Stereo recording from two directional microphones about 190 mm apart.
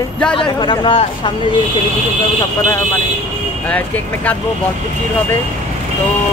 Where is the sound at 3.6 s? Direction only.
10° left (ahead or behind).